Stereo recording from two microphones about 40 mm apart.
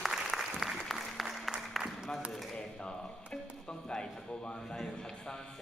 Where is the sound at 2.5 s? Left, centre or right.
Left.